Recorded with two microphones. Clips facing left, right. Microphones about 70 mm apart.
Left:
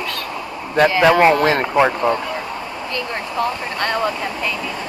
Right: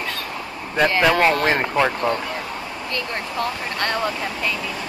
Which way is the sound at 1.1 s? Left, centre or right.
Centre.